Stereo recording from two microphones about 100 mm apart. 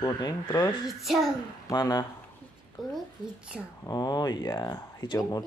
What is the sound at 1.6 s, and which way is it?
Speech, 35° left (ahead or behind).